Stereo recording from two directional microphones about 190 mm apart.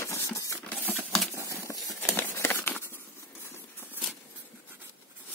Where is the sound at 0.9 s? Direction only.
Centre (ahead or behind).